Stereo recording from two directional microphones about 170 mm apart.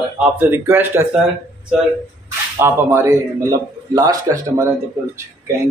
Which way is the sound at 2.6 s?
15° right (ahead or behind).